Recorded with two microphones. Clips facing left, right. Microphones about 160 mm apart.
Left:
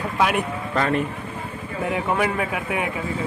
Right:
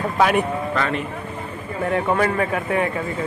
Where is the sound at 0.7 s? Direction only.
40° left (ahead or behind).